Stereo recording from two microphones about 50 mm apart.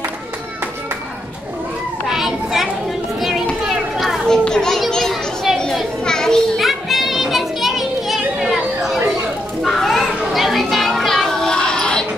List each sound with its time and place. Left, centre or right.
2.0 s children playing: centre
3.2 s a sound: centre
4.3 s children playing: centre
6.6 s children playing: centre